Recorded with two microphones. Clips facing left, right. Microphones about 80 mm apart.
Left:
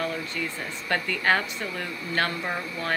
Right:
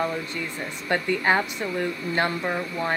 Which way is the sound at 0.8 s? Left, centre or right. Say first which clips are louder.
Right 2 dB; centre.